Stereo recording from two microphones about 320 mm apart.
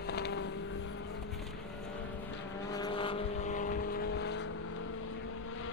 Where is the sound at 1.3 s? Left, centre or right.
Centre.